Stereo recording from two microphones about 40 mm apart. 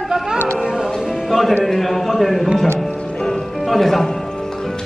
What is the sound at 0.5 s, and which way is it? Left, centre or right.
Music, right.